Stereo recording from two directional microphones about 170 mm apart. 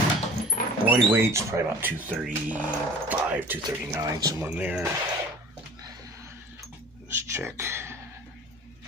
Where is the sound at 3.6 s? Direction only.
20° right (ahead or behind).